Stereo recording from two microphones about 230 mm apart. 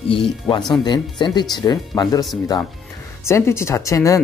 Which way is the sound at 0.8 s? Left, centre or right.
Centre.